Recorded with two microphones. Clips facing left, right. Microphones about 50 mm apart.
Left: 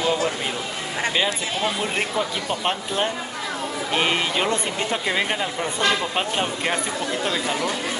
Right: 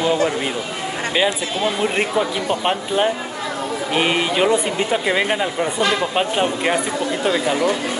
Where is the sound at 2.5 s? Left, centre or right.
Centre.